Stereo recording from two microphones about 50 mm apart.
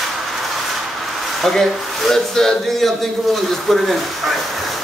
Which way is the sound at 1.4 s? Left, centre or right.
Centre.